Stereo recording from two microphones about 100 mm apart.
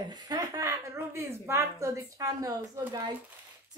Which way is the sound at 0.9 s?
25° right (ahead or behind).